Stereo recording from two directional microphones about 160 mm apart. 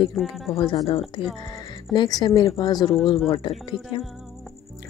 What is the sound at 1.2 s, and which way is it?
A woman's voice, 35° left (ahead or behind).